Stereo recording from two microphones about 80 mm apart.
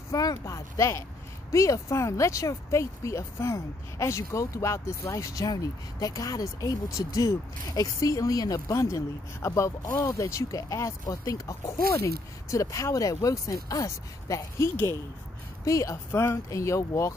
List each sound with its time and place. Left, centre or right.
0.1 s speech: left